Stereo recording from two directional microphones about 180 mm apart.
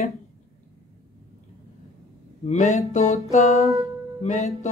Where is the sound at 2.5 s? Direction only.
40° left (ahead or behind).